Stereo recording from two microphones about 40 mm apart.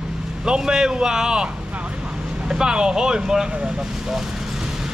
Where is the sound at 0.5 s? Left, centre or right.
Centre.